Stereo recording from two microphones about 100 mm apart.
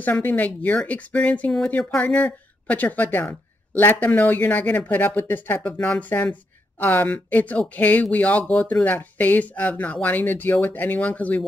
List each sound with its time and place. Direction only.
0.0 s speech: 20° left (ahead or behind)